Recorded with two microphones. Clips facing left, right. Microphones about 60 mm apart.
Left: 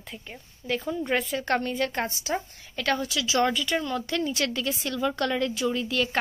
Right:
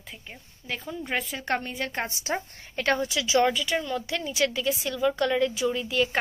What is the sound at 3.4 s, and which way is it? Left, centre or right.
A woman's voice, centre.